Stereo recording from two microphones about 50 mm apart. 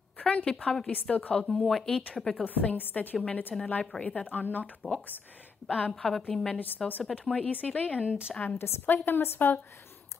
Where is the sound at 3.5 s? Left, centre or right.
Centre.